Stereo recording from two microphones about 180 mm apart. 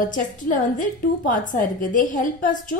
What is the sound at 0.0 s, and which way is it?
A woman's voice, 45° left (ahead or behind).